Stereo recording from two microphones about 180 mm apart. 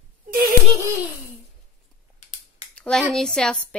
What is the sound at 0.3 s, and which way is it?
Yodeling, 55° right (ahead or behind).